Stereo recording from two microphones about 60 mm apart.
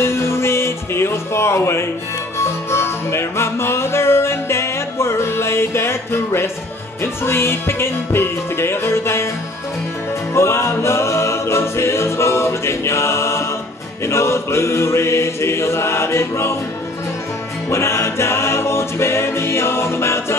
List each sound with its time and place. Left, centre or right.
0.0 s music: left
7.0 s a capella: left
10.3 s a capella: left
17.6 s a capella: left